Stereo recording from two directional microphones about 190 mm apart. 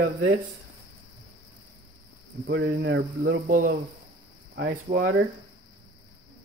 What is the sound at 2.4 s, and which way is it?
Speech, 70° right (ahead or behind).